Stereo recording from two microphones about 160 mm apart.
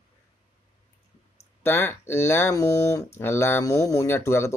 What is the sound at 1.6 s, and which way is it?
Speech, 15° left (ahead or behind).